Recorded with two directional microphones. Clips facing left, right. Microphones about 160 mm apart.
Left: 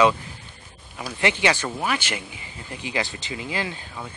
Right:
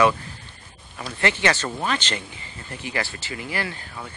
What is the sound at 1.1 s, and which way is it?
Speech, 15° left (ahead or behind).